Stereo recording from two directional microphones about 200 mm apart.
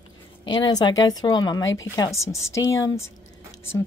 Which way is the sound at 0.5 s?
20° left (ahead or behind).